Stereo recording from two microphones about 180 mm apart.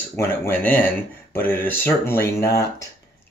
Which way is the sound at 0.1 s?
10° left (ahead or behind).